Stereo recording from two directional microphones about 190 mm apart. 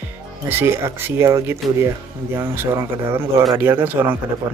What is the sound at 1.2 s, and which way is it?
Speech, 15° right (ahead or behind).